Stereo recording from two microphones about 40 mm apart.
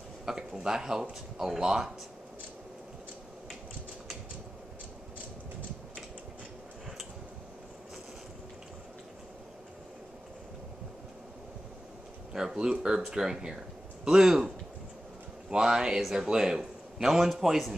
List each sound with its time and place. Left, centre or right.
0.2 s a sound: centre
1.6 s a man's voice: centre
12.3 s a man's voice: centre
15.5 s a man's voice: centre